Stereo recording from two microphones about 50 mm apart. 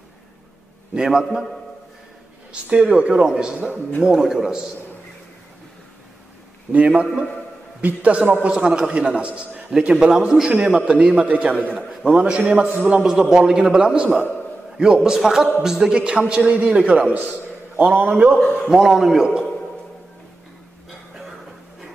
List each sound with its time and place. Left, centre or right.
0.9 s a man's voice: centre
2.5 s a man's voice: right
6.7 s a man's voice: right
15.0 s a man's voice: centre
16.3 s a man's voice: right
18.1 s a man's voice: centre
18.7 s a man's voice: centre